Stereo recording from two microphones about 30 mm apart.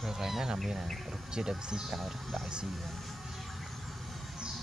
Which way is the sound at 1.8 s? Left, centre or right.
Centre.